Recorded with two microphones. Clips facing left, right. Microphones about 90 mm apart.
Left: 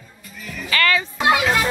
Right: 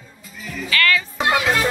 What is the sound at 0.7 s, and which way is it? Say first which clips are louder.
Music: even; 30° left (ahead or behind).